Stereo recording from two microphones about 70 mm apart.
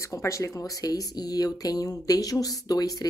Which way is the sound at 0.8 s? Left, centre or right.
Left.